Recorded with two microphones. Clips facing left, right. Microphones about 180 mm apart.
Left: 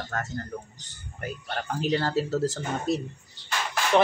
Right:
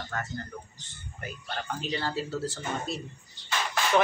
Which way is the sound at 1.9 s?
45° left (ahead or behind).